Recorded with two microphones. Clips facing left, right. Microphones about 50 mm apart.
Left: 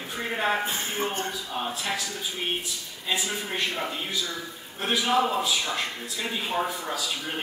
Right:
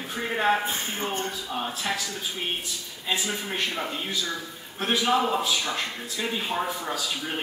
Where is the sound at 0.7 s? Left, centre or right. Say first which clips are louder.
Left 1 dB; left.